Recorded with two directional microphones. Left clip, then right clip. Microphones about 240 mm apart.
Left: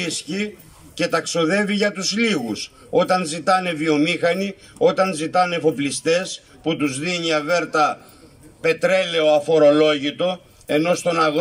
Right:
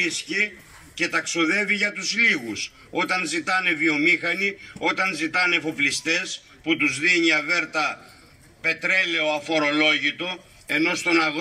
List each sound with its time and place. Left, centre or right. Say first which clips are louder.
0.9 s a man's voice: left 3 dB; left
8.6 s a man's voice: left 4 dB; left